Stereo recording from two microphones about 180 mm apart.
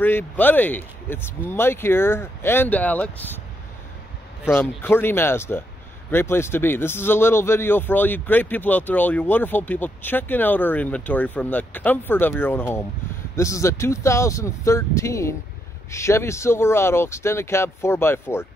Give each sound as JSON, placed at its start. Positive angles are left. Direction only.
{"t": 0.0, "sound": "a man's voice", "side_deg": 10}
{"t": 4.6, "sound": "a man's voice", "side_deg": 10}